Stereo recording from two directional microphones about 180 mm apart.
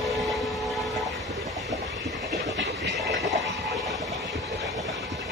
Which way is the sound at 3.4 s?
Centre (ahead or behind).